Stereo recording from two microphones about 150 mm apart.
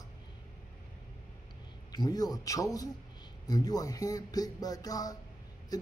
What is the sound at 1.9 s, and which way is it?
Speech, 25° left (ahead or behind).